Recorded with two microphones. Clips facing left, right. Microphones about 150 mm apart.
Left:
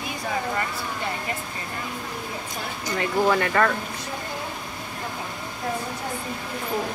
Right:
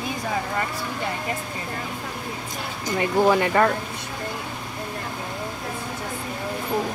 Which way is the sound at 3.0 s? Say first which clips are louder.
Right 3 dB; 15° right (ahead or behind).